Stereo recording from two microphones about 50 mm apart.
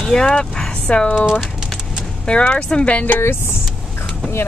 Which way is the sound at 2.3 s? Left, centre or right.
Left.